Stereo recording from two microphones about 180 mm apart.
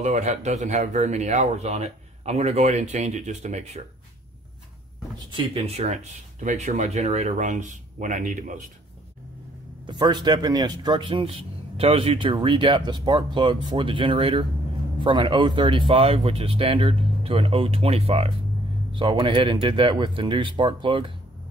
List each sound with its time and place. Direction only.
0.0 s speech: 40° right (ahead or behind)
5.3 s speech: 30° right (ahead or behind)
9.8 s a man's voice: 25° right (ahead or behind)